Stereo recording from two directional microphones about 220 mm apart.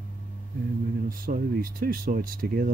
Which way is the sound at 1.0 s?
40° right (ahead or behind).